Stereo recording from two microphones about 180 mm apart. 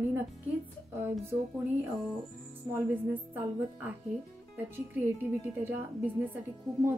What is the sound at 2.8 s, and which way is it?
Speech, 10° right (ahead or behind).